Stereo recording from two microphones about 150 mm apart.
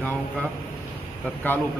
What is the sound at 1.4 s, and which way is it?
Speech, 10° left (ahead or behind).